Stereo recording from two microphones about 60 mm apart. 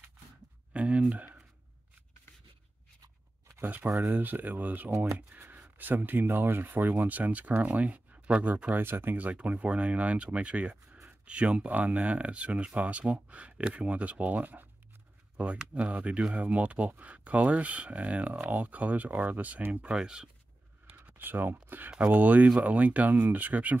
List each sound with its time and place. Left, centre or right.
0.7 s speech: right
3.6 s speech: right
8.8 s speech: right
20.0 s speech: centre
20.9 s a sound: right
21.6 s speech: right